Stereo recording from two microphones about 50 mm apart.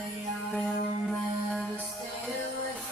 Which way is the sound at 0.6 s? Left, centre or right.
Centre.